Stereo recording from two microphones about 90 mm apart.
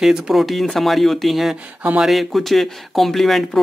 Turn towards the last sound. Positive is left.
turn(degrees=0)  # may be behind; listen again after turning